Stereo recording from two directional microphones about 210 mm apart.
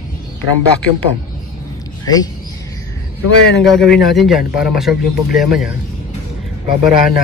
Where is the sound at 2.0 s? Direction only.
20° left (ahead or behind).